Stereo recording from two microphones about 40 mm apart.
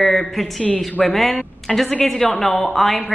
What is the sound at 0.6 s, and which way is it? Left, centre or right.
Speech, left.